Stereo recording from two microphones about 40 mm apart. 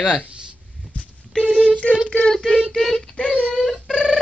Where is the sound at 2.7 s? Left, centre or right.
Centre.